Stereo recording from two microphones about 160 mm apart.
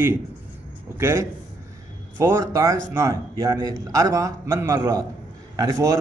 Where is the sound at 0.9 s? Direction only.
15° right (ahead or behind).